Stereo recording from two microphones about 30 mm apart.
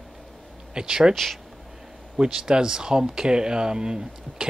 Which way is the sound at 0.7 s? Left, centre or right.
Right.